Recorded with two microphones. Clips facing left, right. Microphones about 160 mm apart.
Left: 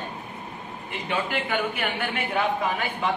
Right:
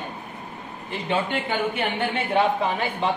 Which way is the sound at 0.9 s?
30° right (ahead or behind).